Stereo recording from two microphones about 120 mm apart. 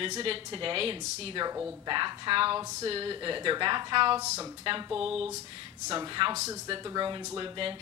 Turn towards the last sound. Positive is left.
turn(degrees=-40)  # may be behind; listen again after turning